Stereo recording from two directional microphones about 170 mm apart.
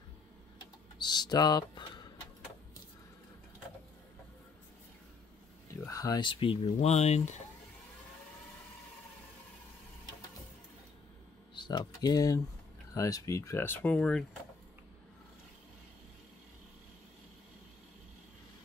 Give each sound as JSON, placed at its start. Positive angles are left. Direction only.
{"t": 0.6, "sound": "speech", "side_deg": 25}
{"t": 5.9, "sound": "speech", "side_deg": 20}
{"t": 11.5, "sound": "speech", "side_deg": 25}